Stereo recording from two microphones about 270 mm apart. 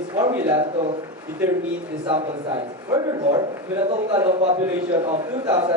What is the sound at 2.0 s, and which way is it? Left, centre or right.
A man's voice, centre.